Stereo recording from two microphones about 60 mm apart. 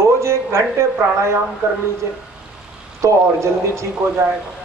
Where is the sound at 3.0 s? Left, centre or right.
Right.